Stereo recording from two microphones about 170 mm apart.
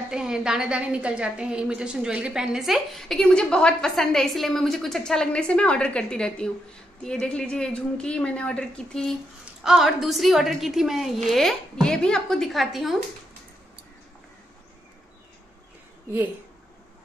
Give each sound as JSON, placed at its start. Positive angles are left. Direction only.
{"t": 0.1, "sound": "a woman's voice", "side_deg": -5}